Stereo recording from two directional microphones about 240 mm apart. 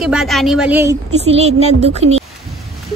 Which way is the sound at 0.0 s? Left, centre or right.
Centre.